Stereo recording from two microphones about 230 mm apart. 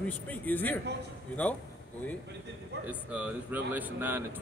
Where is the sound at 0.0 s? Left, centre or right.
Centre.